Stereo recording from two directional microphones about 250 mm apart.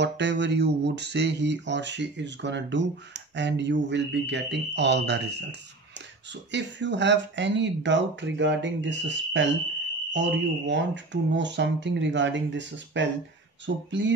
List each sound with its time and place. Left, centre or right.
0.0 s speech: right